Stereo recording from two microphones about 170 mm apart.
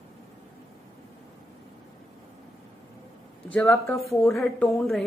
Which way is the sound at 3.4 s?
10° left (ahead or behind).